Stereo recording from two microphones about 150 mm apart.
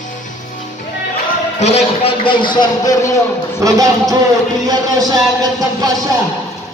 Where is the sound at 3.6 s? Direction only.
25° right (ahead or behind).